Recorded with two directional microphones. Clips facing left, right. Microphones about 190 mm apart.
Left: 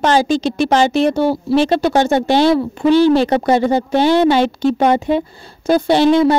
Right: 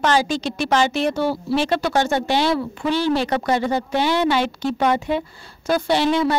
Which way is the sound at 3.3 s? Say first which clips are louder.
Left 6 dB; 25° left (ahead or behind).